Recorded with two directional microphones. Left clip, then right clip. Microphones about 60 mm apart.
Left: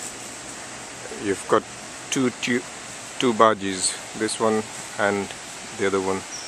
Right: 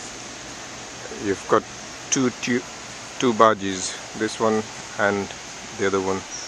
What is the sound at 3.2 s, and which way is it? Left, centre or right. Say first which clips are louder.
Speech: right 1 dB; centre.